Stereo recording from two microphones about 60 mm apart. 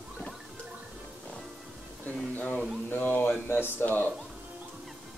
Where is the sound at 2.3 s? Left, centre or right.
Left.